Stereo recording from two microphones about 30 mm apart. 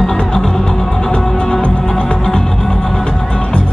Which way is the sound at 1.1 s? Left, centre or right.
Left.